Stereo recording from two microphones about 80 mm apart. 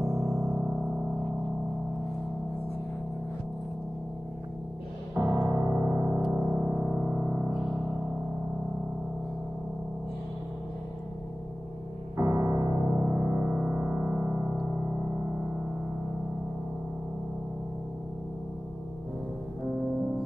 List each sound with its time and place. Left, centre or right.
0.2 s music: centre
5.1 s music: right
6.1 s music: centre
12.2 s music: right
12.8 s music: centre